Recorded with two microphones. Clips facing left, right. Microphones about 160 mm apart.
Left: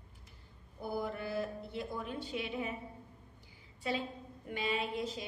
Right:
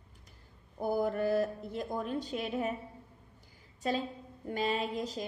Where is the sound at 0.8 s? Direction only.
45° right (ahead or behind).